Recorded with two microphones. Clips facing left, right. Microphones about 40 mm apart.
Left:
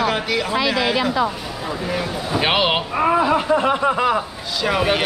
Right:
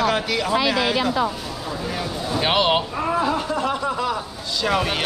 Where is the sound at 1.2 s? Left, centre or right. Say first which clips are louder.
Left 2 dB; centre.